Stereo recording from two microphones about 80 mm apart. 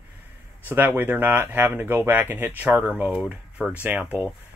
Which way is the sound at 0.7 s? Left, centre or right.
Right.